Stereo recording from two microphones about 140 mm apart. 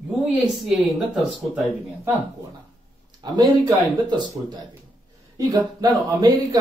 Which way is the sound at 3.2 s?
30° right (ahead or behind).